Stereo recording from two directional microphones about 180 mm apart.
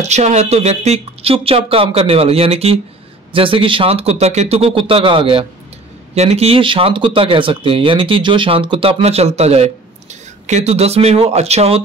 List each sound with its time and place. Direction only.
0.0 s speech: 40° right (ahead or behind)